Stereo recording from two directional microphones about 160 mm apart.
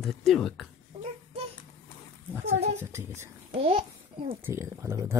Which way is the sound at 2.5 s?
45° right (ahead or behind).